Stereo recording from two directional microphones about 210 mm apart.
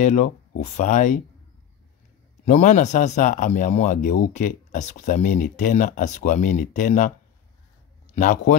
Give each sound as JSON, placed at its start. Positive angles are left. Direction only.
{"t": 0.0, "sound": "a man's voice", "side_deg": 35}
{"t": 2.4, "sound": "a man's voice", "side_deg": 35}
{"t": 8.1, "sound": "a man's voice", "side_deg": 35}